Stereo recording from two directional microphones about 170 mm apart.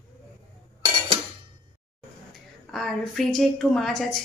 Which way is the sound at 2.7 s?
Centre (ahead or behind).